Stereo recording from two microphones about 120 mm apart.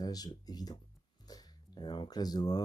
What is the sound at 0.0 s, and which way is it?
Speech, 35° left (ahead or behind).